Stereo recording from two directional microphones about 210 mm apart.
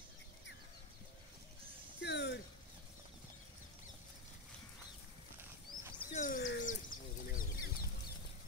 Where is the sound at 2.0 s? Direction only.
55° left (ahead or behind).